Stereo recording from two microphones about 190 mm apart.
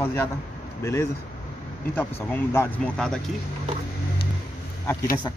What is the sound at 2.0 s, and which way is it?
Speech, 10° left (ahead or behind).